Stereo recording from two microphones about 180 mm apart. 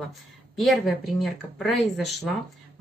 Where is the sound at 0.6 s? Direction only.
Centre (ahead or behind).